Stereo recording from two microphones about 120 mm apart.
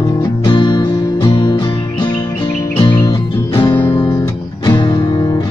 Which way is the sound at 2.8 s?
40° left (ahead or behind).